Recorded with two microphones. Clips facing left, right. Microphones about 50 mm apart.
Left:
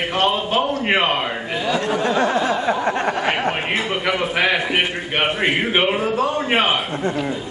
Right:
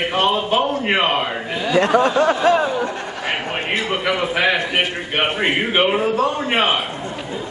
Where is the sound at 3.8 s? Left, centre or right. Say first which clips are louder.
Right 1 dB; centre.